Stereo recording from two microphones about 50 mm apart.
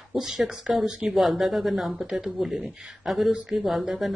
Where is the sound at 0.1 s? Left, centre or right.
Centre.